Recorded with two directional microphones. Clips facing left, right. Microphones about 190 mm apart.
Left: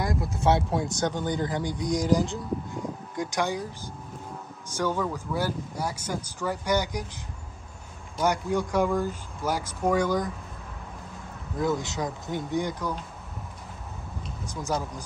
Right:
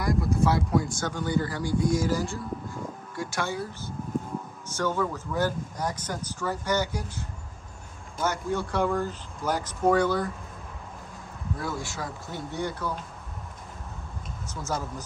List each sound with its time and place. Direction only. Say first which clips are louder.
0.0 s a sound: right 1 dB; 25° left (ahead or behind)
1.4 s speech: right 2 dB; 20° left (ahead or behind)
11.5 s speech: left 6 dB; 20° left (ahead or behind)
14.5 s speech: left 2 dB; 15° left (ahead or behind)